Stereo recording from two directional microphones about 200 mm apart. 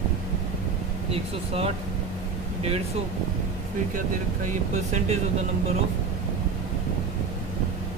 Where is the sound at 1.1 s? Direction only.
30° right (ahead or behind).